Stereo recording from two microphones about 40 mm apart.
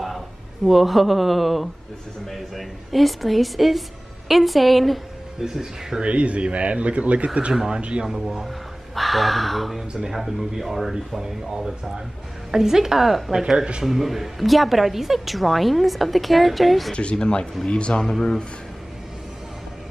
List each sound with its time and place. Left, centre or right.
0.7 s a woman's voice: centre
5.4 s speech: centre
6.0 s a man's voice: right
8.0 s speech: centre
8.5 s a woman's voice: centre
16.9 s speech: left